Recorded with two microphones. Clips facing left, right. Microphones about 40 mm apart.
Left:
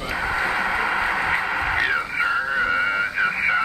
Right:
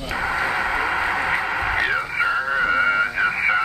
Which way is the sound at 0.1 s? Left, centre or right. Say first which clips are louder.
Right 1 dB; centre.